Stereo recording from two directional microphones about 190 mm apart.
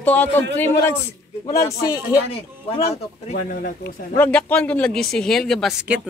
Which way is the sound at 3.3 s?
50° left (ahead or behind).